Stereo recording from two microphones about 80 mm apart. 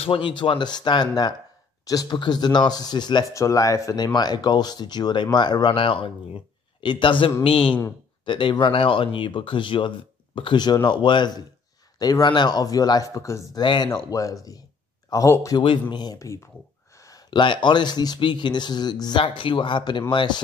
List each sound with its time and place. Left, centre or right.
0.2 s speech: left
1.9 s speech: left
2.1 s speech: left
3.3 s speech: left
3.9 s speech: left
12.0 s speech: left
12.3 s speech: left
13.6 s speech: left
13.8 s speech: left
15.2 s speech: left
15.5 s speech: left
15.9 s speech: left
16.9 s a sound: left
17.3 s speech: left